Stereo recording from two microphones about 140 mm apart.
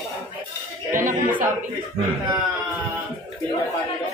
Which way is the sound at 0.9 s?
70° right (ahead or behind).